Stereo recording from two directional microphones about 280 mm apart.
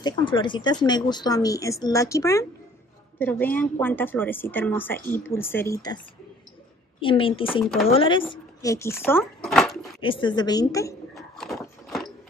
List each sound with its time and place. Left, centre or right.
0.2 s a woman's voice: centre
7.0 s speech: centre
10.0 s a woman's voice: centre
11.1 s a sound: centre